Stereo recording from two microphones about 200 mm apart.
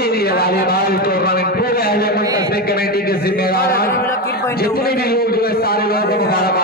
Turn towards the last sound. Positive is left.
turn(degrees=50)  # may be behind; listen again after turning